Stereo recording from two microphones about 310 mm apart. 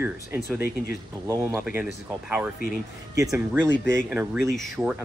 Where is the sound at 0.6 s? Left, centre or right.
Left.